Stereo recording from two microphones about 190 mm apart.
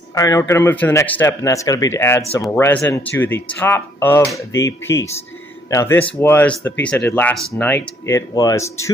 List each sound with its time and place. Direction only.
0.1 s speech: 20° left (ahead or behind)